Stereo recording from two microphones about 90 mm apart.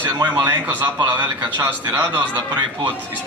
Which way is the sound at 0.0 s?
25° right (ahead or behind).